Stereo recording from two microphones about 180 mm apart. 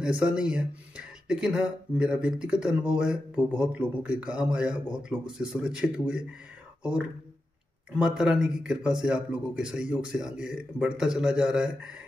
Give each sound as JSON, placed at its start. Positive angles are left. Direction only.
{"t": 0.0, "sound": "speech", "side_deg": -5}
{"t": 8.0, "sound": "speech", "side_deg": -5}